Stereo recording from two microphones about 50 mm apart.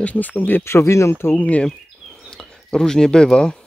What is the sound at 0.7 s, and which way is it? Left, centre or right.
Speech, left.